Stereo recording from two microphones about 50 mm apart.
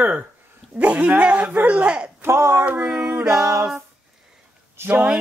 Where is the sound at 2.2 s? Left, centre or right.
Right.